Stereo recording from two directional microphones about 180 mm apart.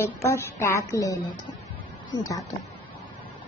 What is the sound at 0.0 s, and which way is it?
A woman's voice, 15° left (ahead or behind).